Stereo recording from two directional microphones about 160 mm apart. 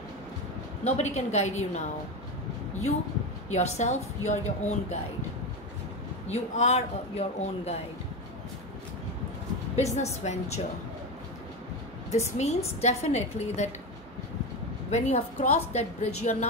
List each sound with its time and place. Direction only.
0.8 s a woman's voice: 45° left (ahead or behind)
3.5 s a woman's voice: 45° left (ahead or behind)
6.2 s speech: 45° left (ahead or behind)
9.8 s a woman's voice: 45° left (ahead or behind)
12.1 s a woman's voice: 45° left (ahead or behind)
14.9 s a woman's voice: 45° left (ahead or behind)